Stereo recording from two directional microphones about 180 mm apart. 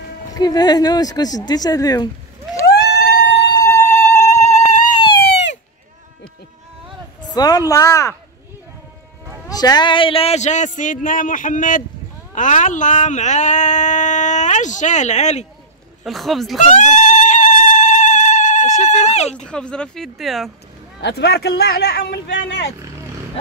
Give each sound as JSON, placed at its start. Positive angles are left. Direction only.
{"t": 0.3, "sound": "speech", "side_deg": 20}
{"t": 2.6, "sound": "a sound", "side_deg": 65}
{"t": 3.5, "sound": "music", "side_deg": 15}
{"t": 4.6, "sound": "a sound", "side_deg": 25}
{"t": 7.3, "sound": "speech", "side_deg": 20}
{"t": 9.5, "sound": "speech", "side_deg": 20}
{"t": 16.0, "sound": "speech", "side_deg": 0}
{"t": 16.7, "sound": "a sound", "side_deg": 45}
{"t": 19.4, "sound": "speech", "side_deg": 5}
{"t": 21.0, "sound": "a man's voice", "side_deg": 65}